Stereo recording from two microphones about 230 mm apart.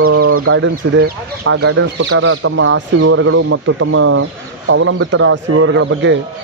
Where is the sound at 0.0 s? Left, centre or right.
Right.